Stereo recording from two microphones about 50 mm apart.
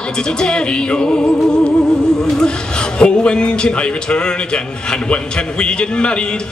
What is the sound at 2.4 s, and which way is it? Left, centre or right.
A man's voice, centre.